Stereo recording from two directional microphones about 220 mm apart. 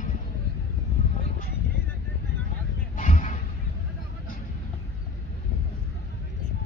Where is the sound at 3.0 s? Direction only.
35° left (ahead or behind).